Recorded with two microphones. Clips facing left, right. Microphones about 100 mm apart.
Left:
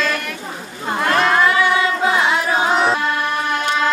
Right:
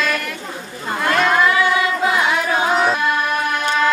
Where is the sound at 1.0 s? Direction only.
30° left (ahead or behind).